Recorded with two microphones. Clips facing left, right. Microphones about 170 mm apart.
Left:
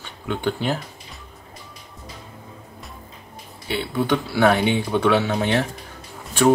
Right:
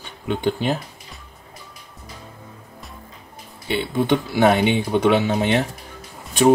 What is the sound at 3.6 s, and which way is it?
Speech, 20° right (ahead or behind).